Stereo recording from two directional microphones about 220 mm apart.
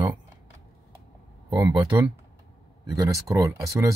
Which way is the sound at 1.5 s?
15° right (ahead or behind).